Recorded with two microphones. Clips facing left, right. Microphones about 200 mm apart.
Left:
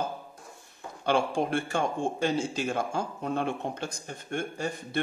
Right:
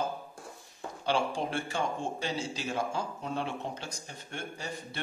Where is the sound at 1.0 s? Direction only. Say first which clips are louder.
Left 4 dB; 55° left (ahead or behind).